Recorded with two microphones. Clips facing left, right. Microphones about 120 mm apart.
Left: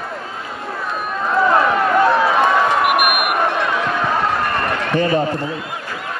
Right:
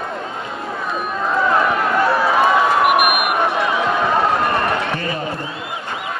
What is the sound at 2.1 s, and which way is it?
Run, 5° right (ahead or behind).